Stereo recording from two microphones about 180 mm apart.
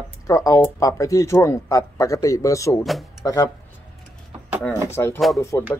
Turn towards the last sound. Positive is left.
turn(degrees=15)  # may be behind; listen again after turning